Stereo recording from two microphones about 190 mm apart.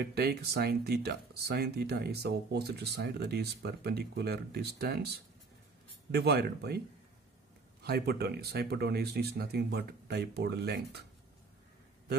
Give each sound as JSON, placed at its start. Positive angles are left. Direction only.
{"t": 0.0, "sound": "speech", "side_deg": -60}
{"t": 7.8, "sound": "speech", "side_deg": -55}